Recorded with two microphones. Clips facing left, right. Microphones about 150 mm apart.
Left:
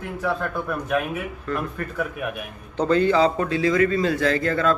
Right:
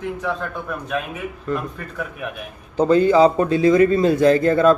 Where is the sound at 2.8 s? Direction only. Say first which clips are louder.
Right 5 dB; 15° right (ahead or behind).